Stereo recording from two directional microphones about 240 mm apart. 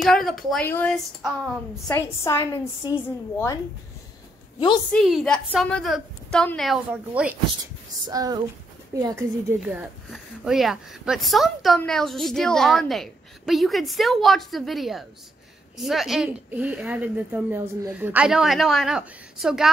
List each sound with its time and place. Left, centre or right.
0.0 s a woman's voice: centre
4.9 s speech: centre
8.1 s speech: centre